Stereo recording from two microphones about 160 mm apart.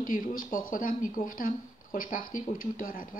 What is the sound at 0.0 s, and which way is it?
Speech, 60° left (ahead or behind).